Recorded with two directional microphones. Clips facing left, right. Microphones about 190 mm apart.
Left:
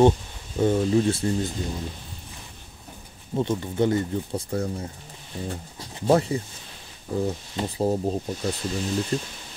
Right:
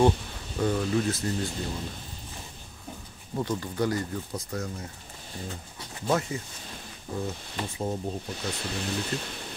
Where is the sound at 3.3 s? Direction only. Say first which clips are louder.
Left 5 dB; 20° left (ahead or behind).